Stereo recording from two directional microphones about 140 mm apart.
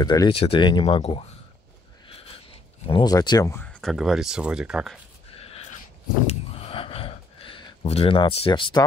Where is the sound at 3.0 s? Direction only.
30° left (ahead or behind).